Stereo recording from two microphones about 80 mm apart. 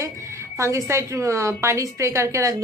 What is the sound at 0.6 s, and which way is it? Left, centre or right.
Speech, right.